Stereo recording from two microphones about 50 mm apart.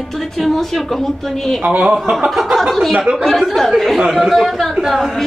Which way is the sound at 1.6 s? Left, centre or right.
Right.